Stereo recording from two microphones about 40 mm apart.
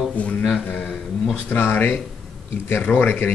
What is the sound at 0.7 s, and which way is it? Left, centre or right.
Speech, left.